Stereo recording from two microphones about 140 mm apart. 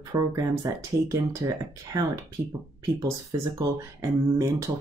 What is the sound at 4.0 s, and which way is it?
Speech, 20° right (ahead or behind).